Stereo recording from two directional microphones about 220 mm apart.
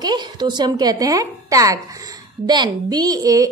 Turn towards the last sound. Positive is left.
turn(degrees=-15)  # may be behind; listen again after turning